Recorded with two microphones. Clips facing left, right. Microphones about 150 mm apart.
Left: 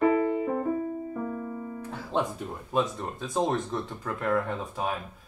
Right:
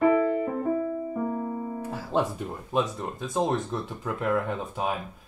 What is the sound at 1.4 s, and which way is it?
Music, 30° right (ahead or behind).